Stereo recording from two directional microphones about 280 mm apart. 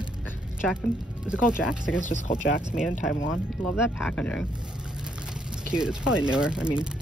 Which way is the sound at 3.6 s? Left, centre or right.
Centre.